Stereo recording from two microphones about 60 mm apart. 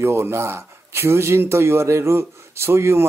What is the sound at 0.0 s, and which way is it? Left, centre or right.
Speech, right.